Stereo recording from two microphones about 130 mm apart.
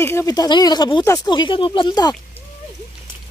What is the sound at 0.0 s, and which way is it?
Speech, 20° left (ahead or behind).